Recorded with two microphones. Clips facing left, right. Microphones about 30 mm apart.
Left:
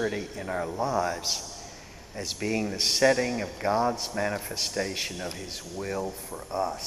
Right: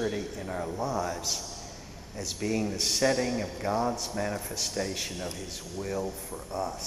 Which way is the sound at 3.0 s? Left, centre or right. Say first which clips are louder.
Left 4 dB; centre.